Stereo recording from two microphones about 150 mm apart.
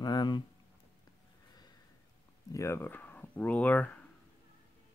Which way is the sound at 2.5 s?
20° left (ahead or behind).